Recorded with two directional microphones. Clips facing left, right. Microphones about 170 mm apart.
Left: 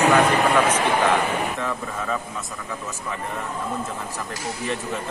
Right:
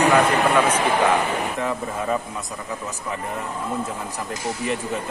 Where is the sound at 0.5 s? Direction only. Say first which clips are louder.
Right 1 dB; 10° right (ahead or behind).